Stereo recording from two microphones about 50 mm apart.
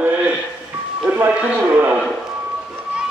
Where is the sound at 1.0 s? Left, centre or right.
Right.